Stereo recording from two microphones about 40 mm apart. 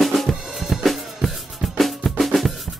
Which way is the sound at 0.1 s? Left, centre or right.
Centre.